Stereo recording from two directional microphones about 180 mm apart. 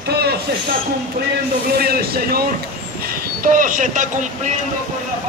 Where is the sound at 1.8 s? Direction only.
60° right (ahead or behind).